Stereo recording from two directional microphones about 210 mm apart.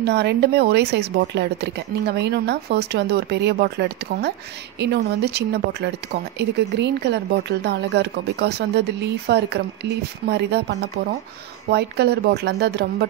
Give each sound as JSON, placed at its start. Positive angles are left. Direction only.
{"t": 0.0, "sound": "speech", "side_deg": -55}